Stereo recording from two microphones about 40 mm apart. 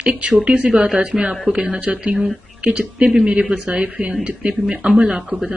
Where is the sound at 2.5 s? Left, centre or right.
Right.